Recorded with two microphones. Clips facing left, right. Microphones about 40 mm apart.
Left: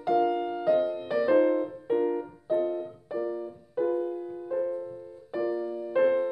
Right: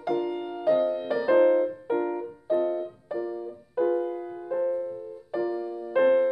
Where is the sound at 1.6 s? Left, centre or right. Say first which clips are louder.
Even; centre.